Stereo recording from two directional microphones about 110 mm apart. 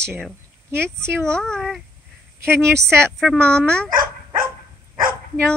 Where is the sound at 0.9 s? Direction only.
25° right (ahead or behind).